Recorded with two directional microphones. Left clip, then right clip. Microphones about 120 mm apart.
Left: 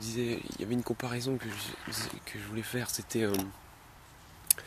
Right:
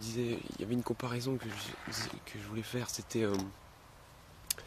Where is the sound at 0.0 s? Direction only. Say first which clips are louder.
Left 3 dB; 15° right (ahead or behind).